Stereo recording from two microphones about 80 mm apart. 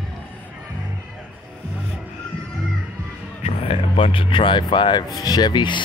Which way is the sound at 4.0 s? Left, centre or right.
Left.